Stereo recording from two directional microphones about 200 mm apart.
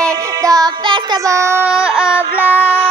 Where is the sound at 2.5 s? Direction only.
10° right (ahead or behind).